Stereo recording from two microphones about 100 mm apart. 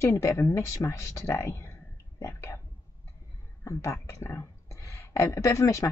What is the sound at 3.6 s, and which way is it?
Speech, 30° left (ahead or behind).